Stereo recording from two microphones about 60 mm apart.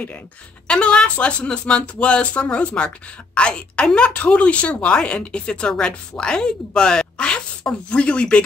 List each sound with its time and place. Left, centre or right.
0.7 s a woman's voice: centre